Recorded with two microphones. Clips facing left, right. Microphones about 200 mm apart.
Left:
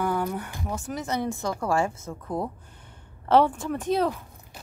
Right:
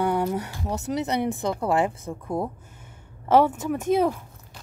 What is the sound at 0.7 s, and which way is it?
A woman's voice, 20° right (ahead or behind).